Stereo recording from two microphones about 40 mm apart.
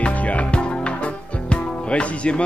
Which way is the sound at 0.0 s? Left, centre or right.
Left.